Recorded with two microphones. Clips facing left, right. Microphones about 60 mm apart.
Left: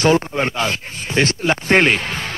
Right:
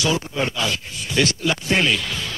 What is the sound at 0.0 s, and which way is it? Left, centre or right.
Speech, left.